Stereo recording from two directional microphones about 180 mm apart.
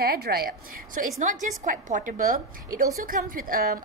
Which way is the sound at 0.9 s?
45° right (ahead or behind).